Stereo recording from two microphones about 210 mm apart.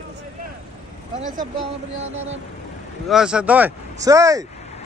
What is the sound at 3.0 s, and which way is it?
Speech, 5° right (ahead or behind).